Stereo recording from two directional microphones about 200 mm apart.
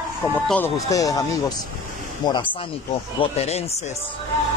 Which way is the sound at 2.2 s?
20° left (ahead or behind).